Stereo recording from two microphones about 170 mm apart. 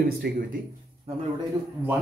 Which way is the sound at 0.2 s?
70° right (ahead or behind).